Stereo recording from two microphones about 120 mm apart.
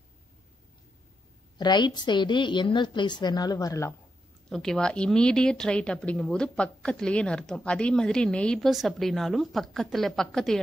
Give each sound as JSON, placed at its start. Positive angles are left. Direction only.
{"t": 1.6, "sound": "a woman's voice", "side_deg": 35}
{"t": 4.5, "sound": "a woman's voice", "side_deg": 5}